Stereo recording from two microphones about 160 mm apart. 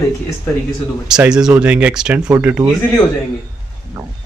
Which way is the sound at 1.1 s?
5° right (ahead or behind).